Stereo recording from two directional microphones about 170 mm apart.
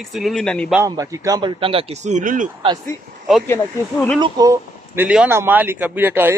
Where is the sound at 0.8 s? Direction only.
20° right (ahead or behind); by 2.5 s 50° right (ahead or behind).